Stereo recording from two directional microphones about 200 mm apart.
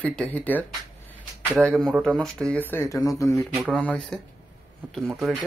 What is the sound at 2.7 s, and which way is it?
Speech, 15° left (ahead or behind).